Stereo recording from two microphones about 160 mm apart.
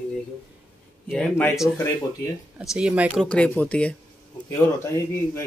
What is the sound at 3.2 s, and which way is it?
Speech, 10° left (ahead or behind).